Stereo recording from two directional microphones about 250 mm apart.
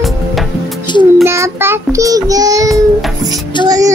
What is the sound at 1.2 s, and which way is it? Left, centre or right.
Child singing, centre.